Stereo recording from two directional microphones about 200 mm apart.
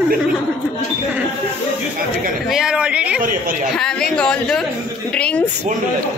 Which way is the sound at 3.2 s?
45° right (ahead or behind).